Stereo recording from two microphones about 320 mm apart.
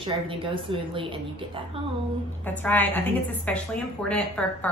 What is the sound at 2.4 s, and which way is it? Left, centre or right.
A woman's voice, centre.